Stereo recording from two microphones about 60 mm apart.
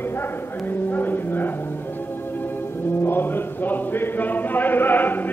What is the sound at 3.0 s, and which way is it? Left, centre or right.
Chant, left.